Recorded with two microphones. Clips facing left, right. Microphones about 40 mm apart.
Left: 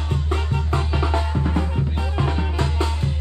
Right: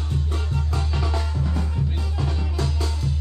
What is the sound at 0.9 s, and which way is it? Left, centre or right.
Music, left.